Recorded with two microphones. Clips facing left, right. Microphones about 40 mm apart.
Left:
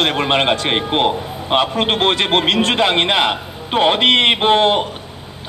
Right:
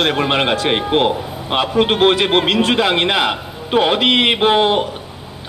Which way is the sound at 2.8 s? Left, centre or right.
Centre.